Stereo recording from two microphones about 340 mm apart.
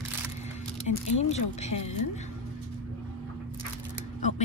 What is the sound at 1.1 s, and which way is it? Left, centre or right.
Speech, centre.